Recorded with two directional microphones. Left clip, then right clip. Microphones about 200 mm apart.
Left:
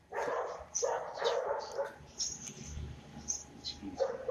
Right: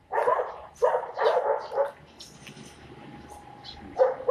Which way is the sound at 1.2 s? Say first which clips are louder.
Right 11 dB; 50° right (ahead or behind).